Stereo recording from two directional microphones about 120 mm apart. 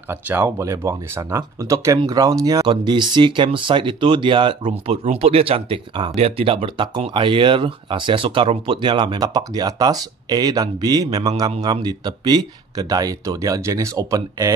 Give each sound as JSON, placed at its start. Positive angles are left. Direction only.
{"t": 0.1, "sound": "speech", "side_deg": -20}
{"t": 5.0, "sound": "speech", "side_deg": -60}